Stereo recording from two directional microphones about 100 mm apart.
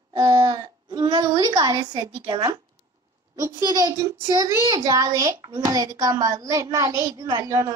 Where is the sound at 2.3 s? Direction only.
40° right (ahead or behind).